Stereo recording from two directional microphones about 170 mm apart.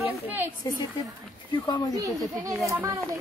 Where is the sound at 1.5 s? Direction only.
25° left (ahead or behind).